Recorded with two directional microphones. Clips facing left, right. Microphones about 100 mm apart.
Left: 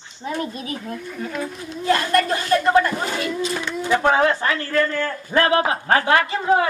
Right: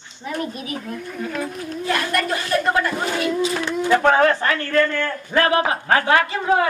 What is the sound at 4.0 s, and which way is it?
A child's voice, 15° left (ahead or behind).